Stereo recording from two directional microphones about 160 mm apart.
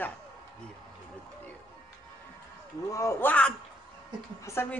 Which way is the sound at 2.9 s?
15° left (ahead or behind).